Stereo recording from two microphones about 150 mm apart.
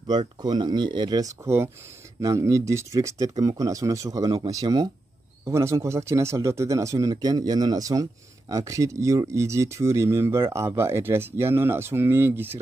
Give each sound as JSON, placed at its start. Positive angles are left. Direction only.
{"t": 0.0, "sound": "speech", "side_deg": -30}